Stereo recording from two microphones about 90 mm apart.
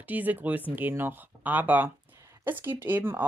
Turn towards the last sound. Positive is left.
turn(degrees=-25)  # may be behind; listen again after turning